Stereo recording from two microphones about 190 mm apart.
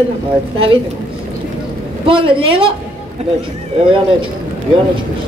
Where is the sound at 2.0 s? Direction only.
25° right (ahead or behind).